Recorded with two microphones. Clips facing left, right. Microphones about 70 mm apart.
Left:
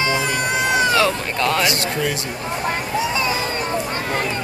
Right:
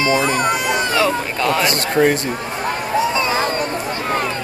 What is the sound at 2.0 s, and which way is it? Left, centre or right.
Speech, right.